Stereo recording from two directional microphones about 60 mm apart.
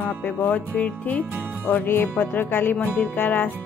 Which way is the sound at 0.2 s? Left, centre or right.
Left.